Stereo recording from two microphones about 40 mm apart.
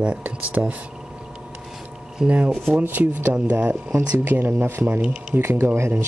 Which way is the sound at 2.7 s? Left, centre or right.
Right.